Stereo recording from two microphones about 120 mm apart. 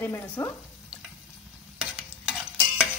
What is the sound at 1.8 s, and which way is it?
Stir, 5° right (ahead or behind).